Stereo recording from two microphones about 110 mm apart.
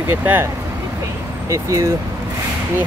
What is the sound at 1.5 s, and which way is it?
Speech, 30° right (ahead or behind).